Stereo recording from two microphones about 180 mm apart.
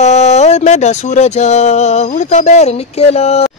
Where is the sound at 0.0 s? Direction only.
40° left (ahead or behind).